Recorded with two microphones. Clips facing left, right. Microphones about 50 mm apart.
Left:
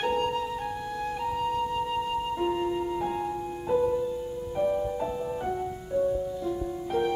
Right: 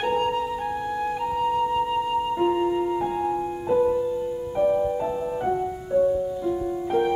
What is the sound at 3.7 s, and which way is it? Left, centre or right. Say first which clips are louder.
Music: right 4 dB; centre.